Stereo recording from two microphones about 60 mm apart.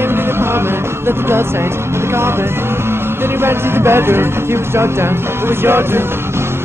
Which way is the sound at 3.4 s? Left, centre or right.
Right.